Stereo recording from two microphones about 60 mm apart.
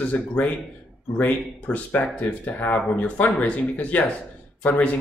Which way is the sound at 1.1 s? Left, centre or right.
Left.